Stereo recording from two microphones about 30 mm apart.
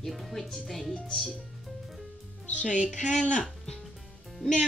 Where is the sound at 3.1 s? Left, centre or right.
Left.